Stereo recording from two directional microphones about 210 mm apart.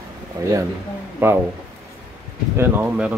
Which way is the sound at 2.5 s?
10° right (ahead or behind).